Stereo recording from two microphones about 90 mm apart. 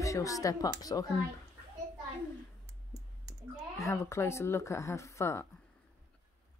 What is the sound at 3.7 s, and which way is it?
A woman's voice, 30° left (ahead or behind).